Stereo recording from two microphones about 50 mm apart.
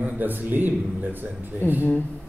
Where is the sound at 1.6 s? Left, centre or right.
Left.